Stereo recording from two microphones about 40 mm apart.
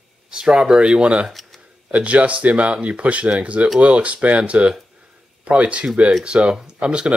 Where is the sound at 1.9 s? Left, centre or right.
Right.